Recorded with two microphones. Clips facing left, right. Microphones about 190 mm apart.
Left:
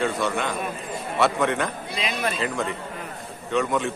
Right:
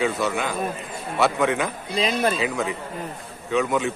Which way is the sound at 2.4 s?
Centre (ahead or behind).